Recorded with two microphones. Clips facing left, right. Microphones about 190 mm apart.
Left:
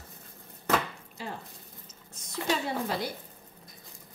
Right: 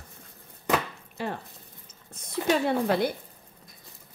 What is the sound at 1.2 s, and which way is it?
A woman's voice, 60° right (ahead or behind).